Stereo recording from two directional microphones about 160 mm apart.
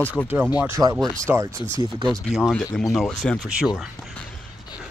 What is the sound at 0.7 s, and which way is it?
Speech, 20° right (ahead or behind).